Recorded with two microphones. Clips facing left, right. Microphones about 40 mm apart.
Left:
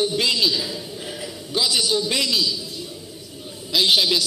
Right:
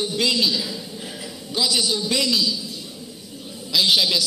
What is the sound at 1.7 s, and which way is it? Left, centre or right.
Speech, left.